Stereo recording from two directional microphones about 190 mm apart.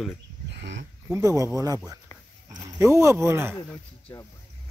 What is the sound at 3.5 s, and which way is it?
Speech, 15° left (ahead or behind).